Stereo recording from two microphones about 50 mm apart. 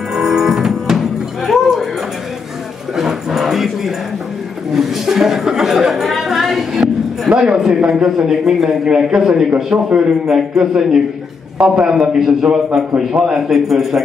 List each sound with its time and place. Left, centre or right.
0.1 s music: centre
3.0 s music: centre
4.7 s a sound: centre
8.8 s a man's voice: centre
12.9 s a man's voice: right
13.3 s a man's voice: centre